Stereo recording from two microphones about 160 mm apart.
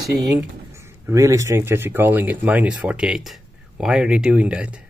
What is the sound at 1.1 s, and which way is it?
Speech, 20° right (ahead or behind).